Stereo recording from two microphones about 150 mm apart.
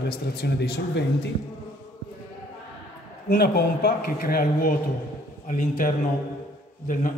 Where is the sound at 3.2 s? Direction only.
90° left; by 5.9 s 60° left (ahead or behind).